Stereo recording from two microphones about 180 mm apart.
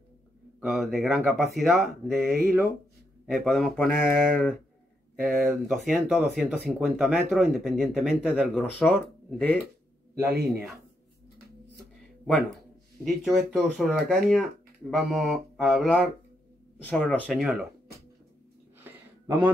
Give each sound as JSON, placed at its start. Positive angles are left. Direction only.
{"t": 0.6, "sound": "speech", "side_deg": 0}
{"t": 3.3, "sound": "speech", "side_deg": 0}
{"t": 10.2, "sound": "speech", "side_deg": -60}
{"t": 12.3, "sound": "speech", "side_deg": 5}
{"t": 19.2, "sound": "a man's voice", "side_deg": -10}